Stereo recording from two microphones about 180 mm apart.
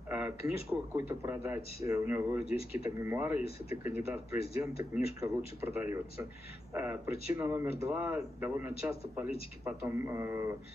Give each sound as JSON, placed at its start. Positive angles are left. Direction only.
{"t": 0.1, "sound": "speech", "side_deg": -10}
{"t": 2.4, "sound": "speech", "side_deg": 35}
{"t": 2.8, "sound": "speech", "side_deg": -15}